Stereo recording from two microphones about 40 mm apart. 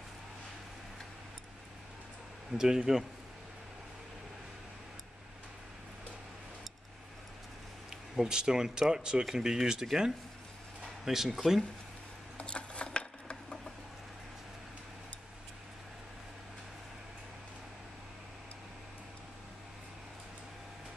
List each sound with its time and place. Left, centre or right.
2.5 s speech: centre
8.2 s speech: centre
11.1 s speech: centre
12.4 s mechanisms: left